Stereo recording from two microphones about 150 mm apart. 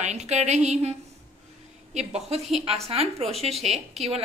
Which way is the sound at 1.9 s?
45° right (ahead or behind).